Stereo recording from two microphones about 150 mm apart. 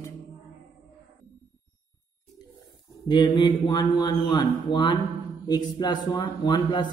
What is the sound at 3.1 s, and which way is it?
A man's voice, 30° left (ahead or behind).